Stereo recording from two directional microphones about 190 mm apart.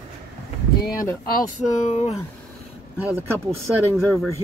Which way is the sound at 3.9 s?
Centre (ahead or behind).